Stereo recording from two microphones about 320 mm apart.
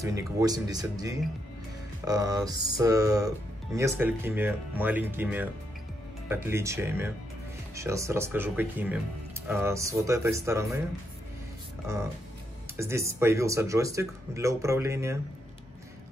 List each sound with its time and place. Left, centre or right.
0.0 s speech: centre
12.7 s speech: centre